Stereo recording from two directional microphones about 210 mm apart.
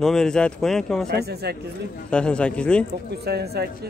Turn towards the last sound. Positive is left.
turn(degrees=-50)  # may be behind; listen again after turning